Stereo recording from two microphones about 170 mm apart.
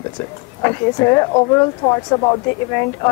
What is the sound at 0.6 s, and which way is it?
Speech, 20° left (ahead or behind).